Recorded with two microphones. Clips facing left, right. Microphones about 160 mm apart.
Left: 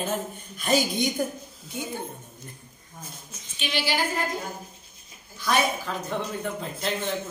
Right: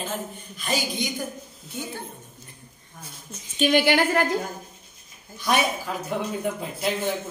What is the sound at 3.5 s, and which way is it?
Chuckle, 50° right (ahead or behind).